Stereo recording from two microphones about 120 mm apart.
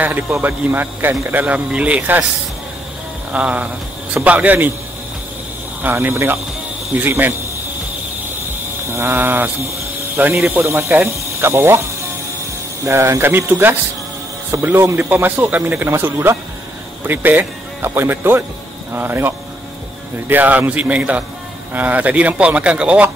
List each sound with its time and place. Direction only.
0.0 s speech: 15° right (ahead or behind)
3.3 s speech: 10° right (ahead or behind)
5.8 s speech: 15° right (ahead or behind)
8.8 s speech: 20° right (ahead or behind)
12.8 s speech: 25° right (ahead or behind)